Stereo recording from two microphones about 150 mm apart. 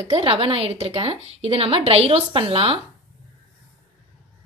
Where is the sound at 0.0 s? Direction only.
35° right (ahead or behind).